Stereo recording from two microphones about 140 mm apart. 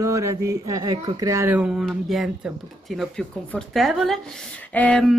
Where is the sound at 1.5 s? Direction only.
5° right (ahead or behind).